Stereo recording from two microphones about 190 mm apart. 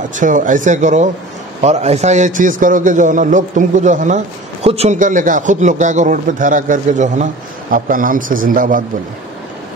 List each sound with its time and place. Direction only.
0.1 s a man's voice: 45° right (ahead or behind)